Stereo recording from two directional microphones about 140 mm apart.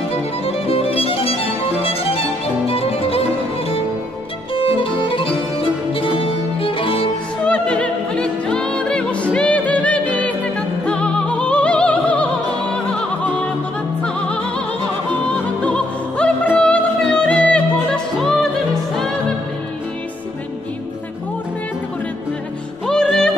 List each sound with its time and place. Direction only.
0.1 s music: 45° left (ahead or behind)
4.6 s music: 40° left (ahead or behind)
7.4 s music: 10° left (ahead or behind)
15.6 s music: 5° left (ahead or behind)
22.8 s music: 5° left (ahead or behind)